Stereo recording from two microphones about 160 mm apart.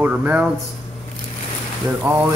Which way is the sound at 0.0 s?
10° right (ahead or behind).